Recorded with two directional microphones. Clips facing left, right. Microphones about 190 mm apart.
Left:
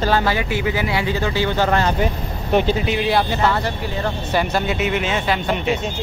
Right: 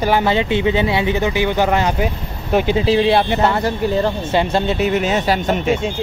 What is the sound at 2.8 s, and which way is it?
Speech, 30° right (ahead or behind).